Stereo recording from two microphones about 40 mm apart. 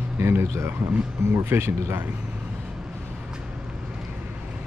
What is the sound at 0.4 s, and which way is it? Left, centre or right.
Speech, right.